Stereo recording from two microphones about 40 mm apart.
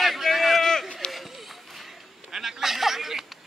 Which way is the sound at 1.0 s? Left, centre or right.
Left.